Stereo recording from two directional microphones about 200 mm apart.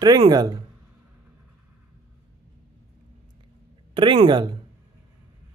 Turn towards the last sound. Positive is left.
turn(degrees=-20)  # may be behind; listen again after turning